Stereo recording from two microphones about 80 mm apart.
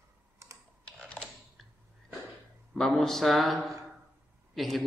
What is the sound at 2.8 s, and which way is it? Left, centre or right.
A man's voice, centre.